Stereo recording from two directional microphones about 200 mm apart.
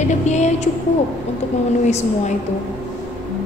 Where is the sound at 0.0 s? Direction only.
35° left (ahead or behind).